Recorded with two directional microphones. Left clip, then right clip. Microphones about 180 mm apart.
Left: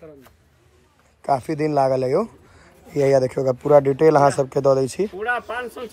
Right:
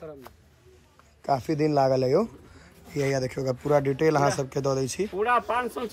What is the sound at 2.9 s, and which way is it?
Speech, centre (ahead or behind).